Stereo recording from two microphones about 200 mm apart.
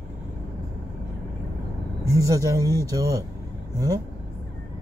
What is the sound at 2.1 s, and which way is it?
Speech, 15° right (ahead or behind).